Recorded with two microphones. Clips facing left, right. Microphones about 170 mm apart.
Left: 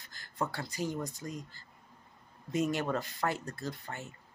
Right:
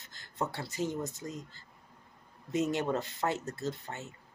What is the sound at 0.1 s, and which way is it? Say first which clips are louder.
Speech: even; 20° right (ahead or behind).